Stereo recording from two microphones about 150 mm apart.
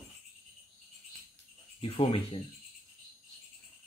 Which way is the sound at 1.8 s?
35° left (ahead or behind).